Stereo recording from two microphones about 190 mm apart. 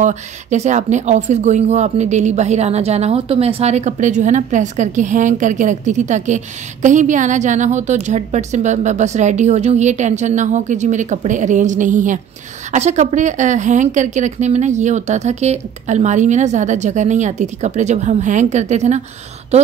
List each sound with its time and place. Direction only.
0.0 s speech: 35° right (ahead or behind)